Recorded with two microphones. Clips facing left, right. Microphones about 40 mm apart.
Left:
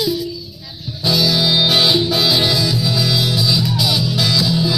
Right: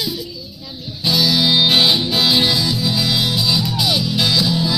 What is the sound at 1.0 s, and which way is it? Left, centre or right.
Music, right.